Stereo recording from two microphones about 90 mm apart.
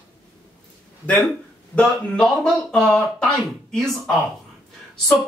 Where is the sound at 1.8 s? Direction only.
5° left (ahead or behind).